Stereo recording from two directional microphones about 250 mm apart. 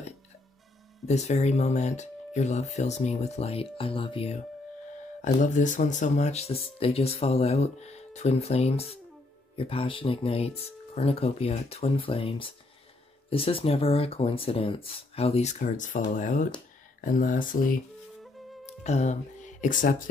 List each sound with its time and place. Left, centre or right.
1.0 s speech: left